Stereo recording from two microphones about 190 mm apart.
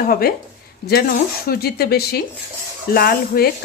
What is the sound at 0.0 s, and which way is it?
A woman's voice, 50° left (ahead or behind).